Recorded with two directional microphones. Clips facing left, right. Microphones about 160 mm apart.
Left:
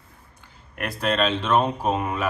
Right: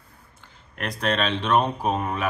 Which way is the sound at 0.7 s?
5° left (ahead or behind).